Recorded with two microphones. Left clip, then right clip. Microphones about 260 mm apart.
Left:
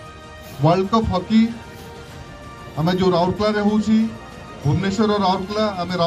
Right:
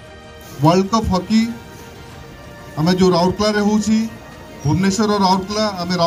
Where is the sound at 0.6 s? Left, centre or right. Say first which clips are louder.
Right 2 dB; right.